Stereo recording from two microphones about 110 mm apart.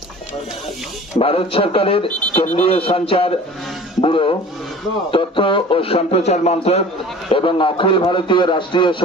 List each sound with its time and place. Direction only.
1.2 s speech: 60° left (ahead or behind); by 6.8 s 75° left (ahead or behind)
7.2 s a man's voice: 50° left (ahead or behind)